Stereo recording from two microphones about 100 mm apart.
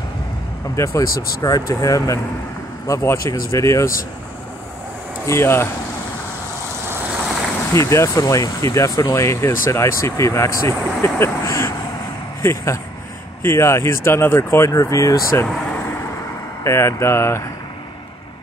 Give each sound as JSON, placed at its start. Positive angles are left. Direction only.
{"t": 0.7, "sound": "speech", "side_deg": 30}
{"t": 5.2, "sound": "speech", "side_deg": 25}
{"t": 7.7, "sound": "speech", "side_deg": 30}
{"t": 16.6, "sound": "speech", "side_deg": 30}